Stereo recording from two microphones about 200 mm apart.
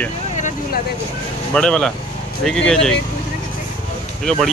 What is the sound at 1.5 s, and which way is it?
Speech, 5° left (ahead or behind).